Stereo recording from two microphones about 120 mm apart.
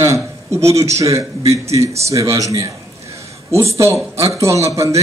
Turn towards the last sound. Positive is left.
turn(degrees=-25)  # may be behind; listen again after turning